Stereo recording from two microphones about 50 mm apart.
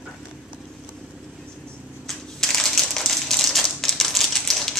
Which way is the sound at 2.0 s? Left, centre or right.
Centre.